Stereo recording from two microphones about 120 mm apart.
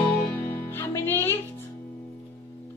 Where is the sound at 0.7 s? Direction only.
20° left (ahead or behind).